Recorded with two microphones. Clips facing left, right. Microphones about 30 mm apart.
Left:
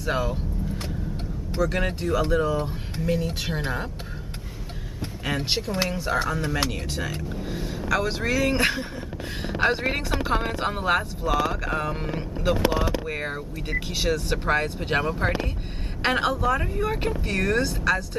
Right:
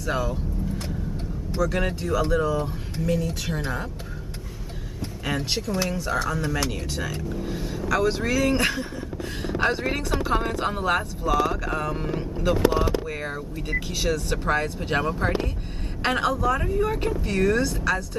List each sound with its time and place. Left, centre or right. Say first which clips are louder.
0.0 s speech: even; left
1.5 s speech: even; left
5.4 s speech: left 1 dB; left